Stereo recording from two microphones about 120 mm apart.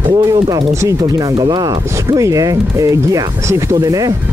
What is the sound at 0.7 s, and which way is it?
Speech, 25° right (ahead or behind).